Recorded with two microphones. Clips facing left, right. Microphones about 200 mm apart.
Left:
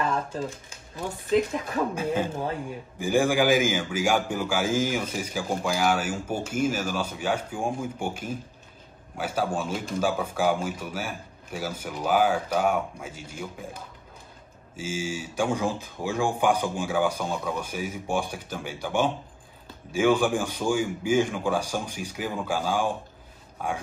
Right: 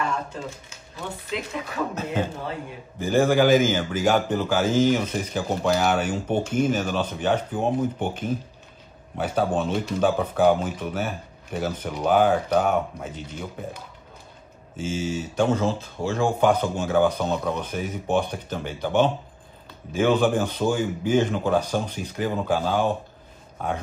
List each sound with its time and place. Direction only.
1.3 s speech: 40° left (ahead or behind)
3.0 s a man's voice: 10° left (ahead or behind)
14.8 s a man's voice: 10° left (ahead or behind)